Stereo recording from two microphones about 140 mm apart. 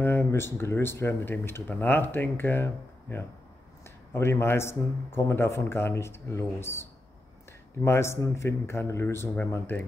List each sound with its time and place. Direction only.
0.0 s speech: 20° left (ahead or behind)